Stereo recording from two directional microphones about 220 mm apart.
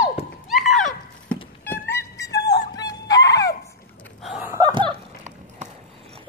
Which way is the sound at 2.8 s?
15° left (ahead or behind).